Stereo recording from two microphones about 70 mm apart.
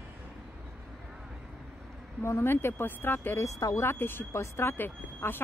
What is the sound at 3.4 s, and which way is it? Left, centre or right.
Speech, left.